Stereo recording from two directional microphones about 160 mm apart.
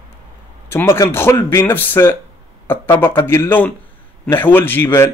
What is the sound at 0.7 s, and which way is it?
A man's voice, 15° left (ahead or behind).